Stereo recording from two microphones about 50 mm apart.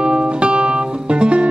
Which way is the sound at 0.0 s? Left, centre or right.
Centre.